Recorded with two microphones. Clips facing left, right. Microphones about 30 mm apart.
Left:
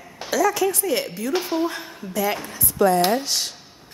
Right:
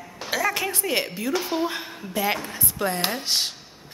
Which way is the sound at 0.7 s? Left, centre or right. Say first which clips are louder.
Left 2 dB; right.